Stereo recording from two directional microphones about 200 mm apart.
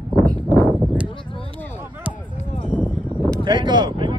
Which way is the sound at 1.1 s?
25° left (ahead or behind).